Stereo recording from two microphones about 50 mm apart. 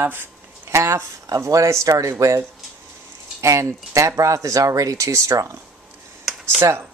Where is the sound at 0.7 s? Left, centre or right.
Right.